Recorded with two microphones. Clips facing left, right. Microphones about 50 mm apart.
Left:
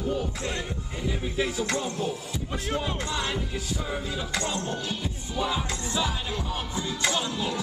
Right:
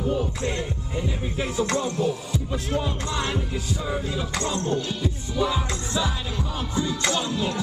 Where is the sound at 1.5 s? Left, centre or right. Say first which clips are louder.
Right 4 dB; right.